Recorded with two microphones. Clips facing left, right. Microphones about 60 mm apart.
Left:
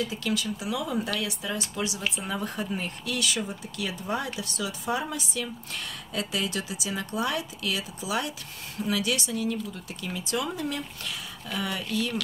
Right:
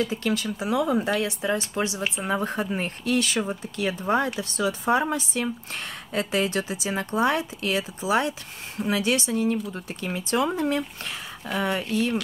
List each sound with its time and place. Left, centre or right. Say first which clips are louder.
0.0 s speech: right 4 dB; right